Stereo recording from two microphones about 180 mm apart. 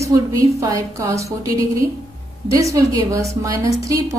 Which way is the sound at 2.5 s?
15° right (ahead or behind).